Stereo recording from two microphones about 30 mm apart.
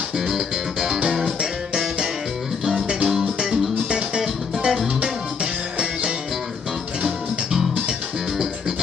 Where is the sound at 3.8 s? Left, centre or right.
Right.